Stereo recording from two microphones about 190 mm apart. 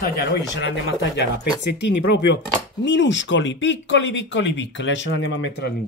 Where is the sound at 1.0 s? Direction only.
65° left (ahead or behind).